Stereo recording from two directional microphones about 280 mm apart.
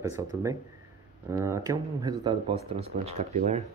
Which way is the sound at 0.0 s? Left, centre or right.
Centre.